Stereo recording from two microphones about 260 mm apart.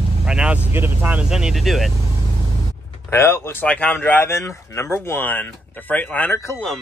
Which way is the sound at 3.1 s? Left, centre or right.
Centre.